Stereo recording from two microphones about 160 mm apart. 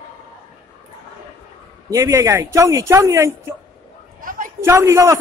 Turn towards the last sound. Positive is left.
turn(degrees=-15)  # may be behind; listen again after turning